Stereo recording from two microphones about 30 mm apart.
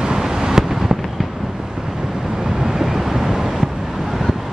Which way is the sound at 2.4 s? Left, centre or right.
Centre.